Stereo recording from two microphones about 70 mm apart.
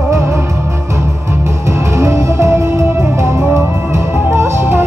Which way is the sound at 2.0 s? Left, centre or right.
Right.